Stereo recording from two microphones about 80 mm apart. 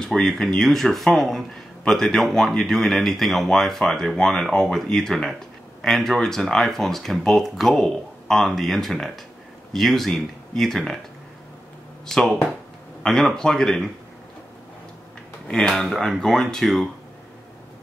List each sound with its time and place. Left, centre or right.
0.0 s speech: centre
12.1 s speech: centre
15.4 s speech: centre